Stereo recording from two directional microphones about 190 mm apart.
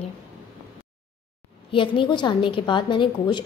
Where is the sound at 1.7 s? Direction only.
25° left (ahead or behind).